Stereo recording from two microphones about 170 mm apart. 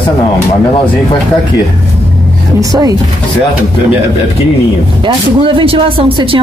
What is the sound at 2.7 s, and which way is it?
Speech, 20° right (ahead or behind).